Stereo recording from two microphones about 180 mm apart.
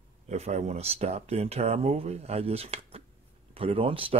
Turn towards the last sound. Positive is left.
turn(degrees=-30)  # may be behind; listen again after turning